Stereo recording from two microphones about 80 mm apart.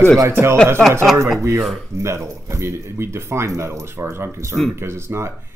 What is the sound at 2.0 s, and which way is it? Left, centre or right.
Speech, right.